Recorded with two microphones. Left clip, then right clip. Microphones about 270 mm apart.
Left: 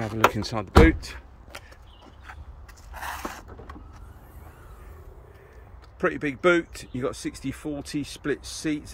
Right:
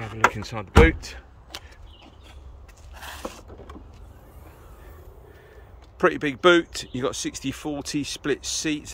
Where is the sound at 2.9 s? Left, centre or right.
Centre.